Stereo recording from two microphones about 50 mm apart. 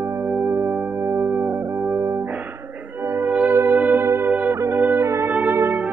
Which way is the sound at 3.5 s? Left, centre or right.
Right.